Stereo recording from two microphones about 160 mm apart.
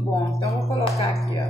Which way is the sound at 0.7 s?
40° left (ahead or behind).